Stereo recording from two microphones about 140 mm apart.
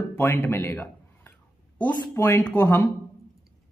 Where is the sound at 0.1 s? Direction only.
15° left (ahead or behind).